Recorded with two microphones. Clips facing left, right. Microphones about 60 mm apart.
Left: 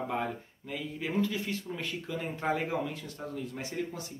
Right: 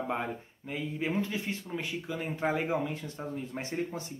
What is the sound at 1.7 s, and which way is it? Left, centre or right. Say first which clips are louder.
Speech: right 1 dB; centre.